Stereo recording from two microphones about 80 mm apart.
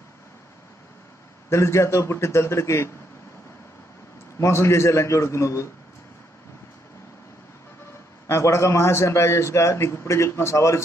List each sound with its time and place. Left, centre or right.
1.5 s a man's voice: left
4.4 s a man's voice: left
8.3 s a man's voice: left